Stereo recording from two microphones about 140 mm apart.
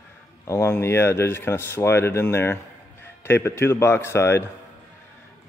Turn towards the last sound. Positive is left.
turn(degrees=20)  # may be behind; listen again after turning